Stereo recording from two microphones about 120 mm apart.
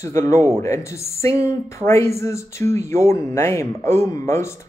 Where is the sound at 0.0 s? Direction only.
20° left (ahead or behind).